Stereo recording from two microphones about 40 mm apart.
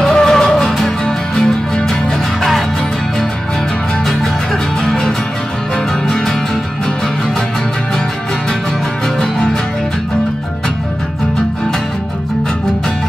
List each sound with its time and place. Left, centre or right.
0.0 s music: centre
4.8 s music: centre